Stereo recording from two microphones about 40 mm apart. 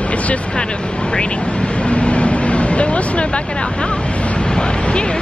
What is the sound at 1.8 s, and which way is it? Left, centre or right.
Speech, left.